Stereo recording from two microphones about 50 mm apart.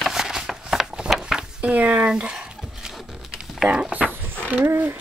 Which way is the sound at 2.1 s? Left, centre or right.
Centre.